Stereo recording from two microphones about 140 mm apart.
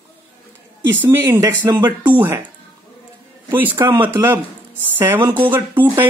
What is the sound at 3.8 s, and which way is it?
Speech, 35° right (ahead or behind).